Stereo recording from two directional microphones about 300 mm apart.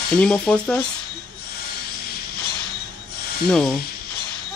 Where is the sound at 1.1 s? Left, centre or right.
Left.